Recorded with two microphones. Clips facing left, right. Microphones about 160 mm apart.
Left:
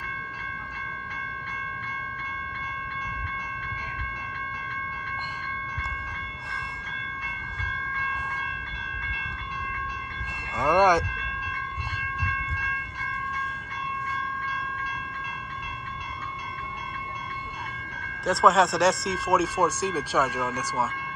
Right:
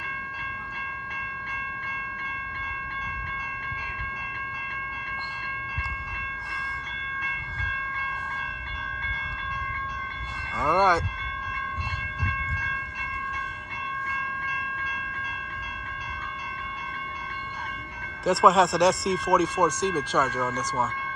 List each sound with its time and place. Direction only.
10.6 s speech: 15° left (ahead or behind)
18.2 s speech: centre (ahead or behind)